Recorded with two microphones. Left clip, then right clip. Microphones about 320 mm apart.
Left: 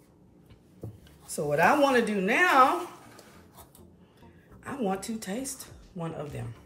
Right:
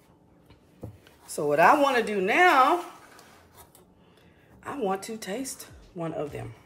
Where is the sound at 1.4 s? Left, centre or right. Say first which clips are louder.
Right 3 dB; centre.